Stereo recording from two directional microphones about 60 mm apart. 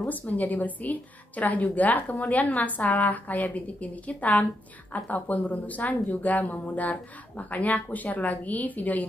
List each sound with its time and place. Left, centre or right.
0.0 s a woman's voice: left